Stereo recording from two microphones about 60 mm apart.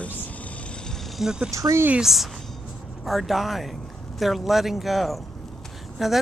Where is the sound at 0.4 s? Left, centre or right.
Centre.